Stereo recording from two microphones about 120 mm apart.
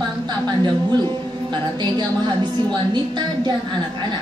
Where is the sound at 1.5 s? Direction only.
40° right (ahead or behind).